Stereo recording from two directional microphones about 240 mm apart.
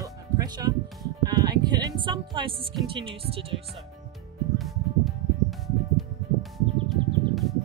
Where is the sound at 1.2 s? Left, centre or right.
Centre.